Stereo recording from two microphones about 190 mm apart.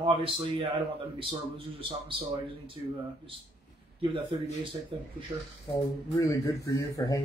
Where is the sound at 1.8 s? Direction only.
25° right (ahead or behind).